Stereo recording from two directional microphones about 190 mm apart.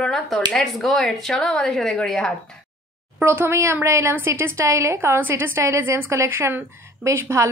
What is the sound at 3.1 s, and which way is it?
Speech, 10° right (ahead or behind).